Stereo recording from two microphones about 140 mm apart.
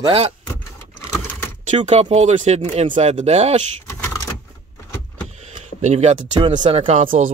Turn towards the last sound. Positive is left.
turn(degrees=-65)  # may be behind; listen again after turning